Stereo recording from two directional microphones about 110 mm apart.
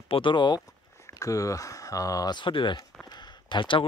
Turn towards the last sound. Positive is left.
turn(degrees=45)  # may be behind; listen again after turning